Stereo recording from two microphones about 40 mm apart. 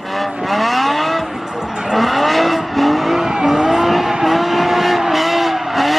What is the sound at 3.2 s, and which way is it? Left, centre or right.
Vehicle, centre.